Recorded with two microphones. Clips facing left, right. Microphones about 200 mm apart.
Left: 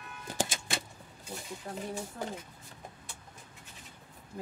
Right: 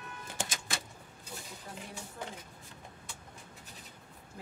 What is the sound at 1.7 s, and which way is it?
Speech, 50° left (ahead or behind).